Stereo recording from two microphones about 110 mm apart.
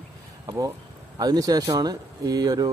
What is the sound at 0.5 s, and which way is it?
Speech, 35° right (ahead or behind).